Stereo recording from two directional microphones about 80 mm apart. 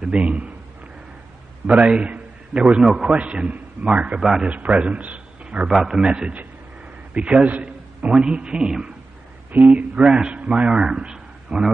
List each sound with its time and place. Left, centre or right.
0.0 s a man's voice: centre
1.7 s a man's voice: centre
5.7 s a man's voice: centre